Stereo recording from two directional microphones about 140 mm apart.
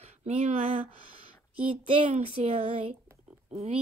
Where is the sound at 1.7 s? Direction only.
40° right (ahead or behind).